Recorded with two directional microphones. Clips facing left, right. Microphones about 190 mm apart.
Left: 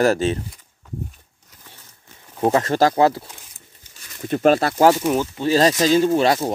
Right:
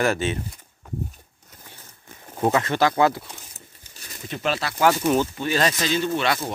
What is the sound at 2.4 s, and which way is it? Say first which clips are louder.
Speech: left 3 dB; 35° left (ahead or behind).